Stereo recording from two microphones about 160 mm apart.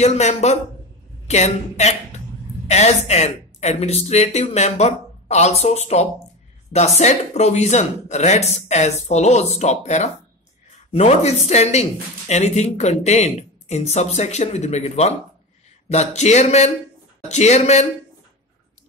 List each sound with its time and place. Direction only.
0.0 s speech: 45° left (ahead or behind)